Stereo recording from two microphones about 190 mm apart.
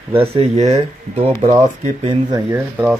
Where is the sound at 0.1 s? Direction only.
30° right (ahead or behind).